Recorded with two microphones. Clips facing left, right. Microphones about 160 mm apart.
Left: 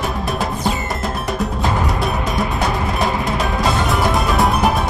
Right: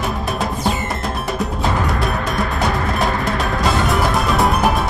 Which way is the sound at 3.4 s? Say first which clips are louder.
Even; centre (ahead or behind).